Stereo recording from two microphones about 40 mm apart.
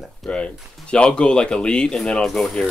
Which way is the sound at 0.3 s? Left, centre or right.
Left.